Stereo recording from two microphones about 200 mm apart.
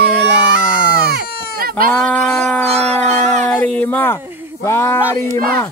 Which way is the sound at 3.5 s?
10° left (ahead or behind).